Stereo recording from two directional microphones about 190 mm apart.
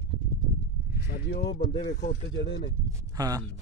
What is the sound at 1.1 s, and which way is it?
Speech, 60° left (ahead or behind).